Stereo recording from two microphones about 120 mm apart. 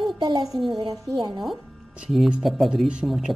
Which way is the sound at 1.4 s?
Centre (ahead or behind).